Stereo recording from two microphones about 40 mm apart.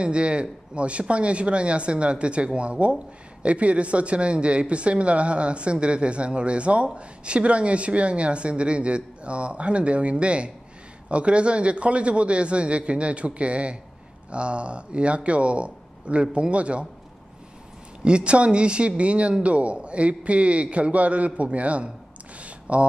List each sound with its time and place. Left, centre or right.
0.0 s speech: right
18.0 s a man's voice: right
22.4 s a sound: right